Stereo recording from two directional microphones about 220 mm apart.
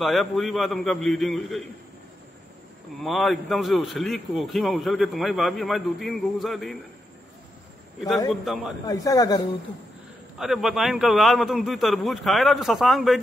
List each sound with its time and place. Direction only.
0.0 s a man's voice: centre (ahead or behind)
3.0 s a man's voice: centre (ahead or behind)
8.3 s a man's voice: centre (ahead or behind)
8.8 s speech: 15° left (ahead or behind)
10.4 s a man's voice: centre (ahead or behind)